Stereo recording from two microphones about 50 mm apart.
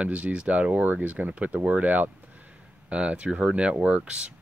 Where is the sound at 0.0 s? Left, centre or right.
Right.